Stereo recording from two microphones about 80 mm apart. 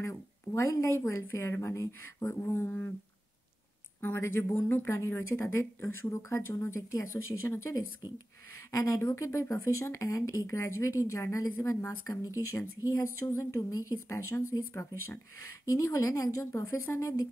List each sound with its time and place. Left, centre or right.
0.0 s a sound: left
0.7 s speech: left
4.0 s a woman's voice: left
13.9 s speech: left